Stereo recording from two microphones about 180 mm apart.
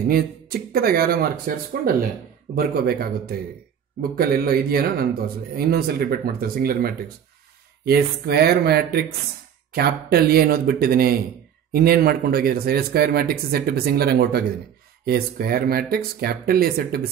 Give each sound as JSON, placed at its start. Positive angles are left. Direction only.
{"t": 0.1, "sound": "speech", "side_deg": -55}